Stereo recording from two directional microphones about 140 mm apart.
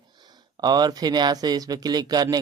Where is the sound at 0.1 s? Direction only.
30° right (ahead or behind).